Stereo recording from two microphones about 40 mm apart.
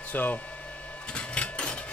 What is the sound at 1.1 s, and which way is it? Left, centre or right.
Cash register, left.